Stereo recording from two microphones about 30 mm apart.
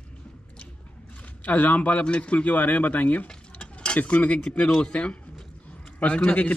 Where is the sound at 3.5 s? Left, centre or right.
Left.